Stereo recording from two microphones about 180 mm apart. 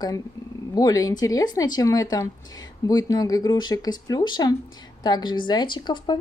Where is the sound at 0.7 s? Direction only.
20° left (ahead or behind).